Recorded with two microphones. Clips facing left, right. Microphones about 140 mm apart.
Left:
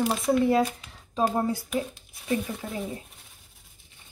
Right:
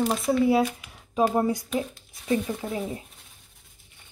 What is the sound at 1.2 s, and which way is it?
Speech, 15° right (ahead or behind).